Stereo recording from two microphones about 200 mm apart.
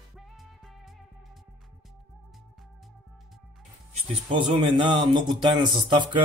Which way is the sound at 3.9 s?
25° right (ahead or behind).